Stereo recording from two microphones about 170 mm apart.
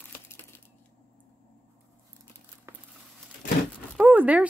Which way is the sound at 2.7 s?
15° right (ahead or behind).